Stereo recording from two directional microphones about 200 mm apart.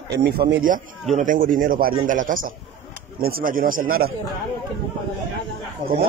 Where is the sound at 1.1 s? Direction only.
40° right (ahead or behind).